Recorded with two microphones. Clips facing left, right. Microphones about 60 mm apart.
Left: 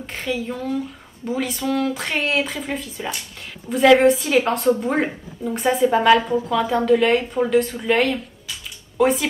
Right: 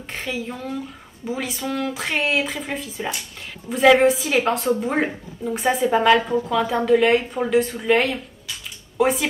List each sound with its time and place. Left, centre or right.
0.0 s speech: centre